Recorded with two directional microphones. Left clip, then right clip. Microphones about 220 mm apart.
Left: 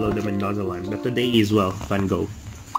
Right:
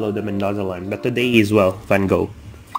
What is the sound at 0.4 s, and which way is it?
Speech, 45° right (ahead or behind).